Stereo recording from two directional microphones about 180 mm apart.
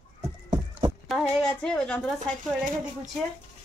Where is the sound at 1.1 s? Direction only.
Centre (ahead or behind).